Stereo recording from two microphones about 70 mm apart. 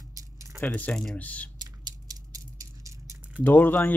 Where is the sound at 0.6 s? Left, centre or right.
Left.